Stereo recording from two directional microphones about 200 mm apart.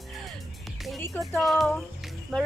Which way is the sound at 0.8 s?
Centre (ahead or behind).